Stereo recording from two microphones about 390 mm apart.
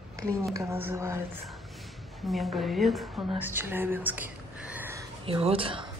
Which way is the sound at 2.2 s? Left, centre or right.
Centre.